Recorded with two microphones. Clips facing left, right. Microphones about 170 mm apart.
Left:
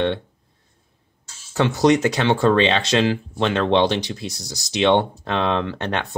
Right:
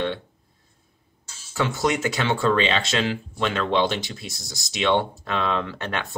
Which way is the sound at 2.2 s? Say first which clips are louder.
Left 4 dB; 25° left (ahead or behind).